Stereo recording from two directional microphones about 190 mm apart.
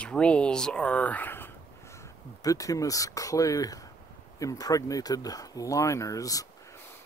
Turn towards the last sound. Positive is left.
turn(degrees=20)  # may be behind; listen again after turning